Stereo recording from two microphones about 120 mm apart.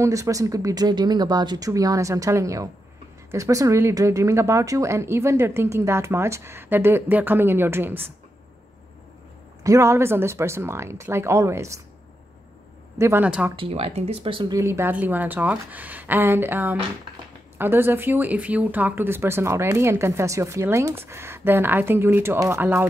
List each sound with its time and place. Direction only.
0.0 s speech: 25° right (ahead or behind)
9.6 s speech: 25° right (ahead or behind)
13.0 s speech: 20° right (ahead or behind)
13.6 s speech: 55° right (ahead or behind)
14.5 s speech: 25° right (ahead or behind)